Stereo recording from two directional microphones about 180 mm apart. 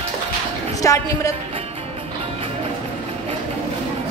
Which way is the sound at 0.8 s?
20° left (ahead or behind).